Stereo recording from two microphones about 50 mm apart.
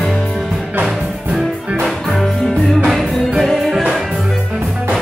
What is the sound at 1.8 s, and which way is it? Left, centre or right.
Music, centre.